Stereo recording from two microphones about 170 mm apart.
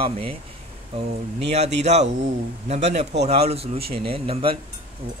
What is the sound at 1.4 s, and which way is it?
Speech, 40° right (ahead or behind).